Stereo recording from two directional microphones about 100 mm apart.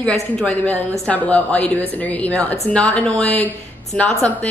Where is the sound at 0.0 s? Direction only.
5° left (ahead or behind).